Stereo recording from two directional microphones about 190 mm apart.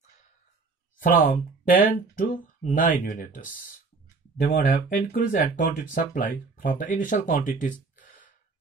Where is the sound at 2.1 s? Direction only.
45° left (ahead or behind).